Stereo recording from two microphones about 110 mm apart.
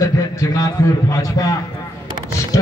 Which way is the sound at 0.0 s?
30° left (ahead or behind).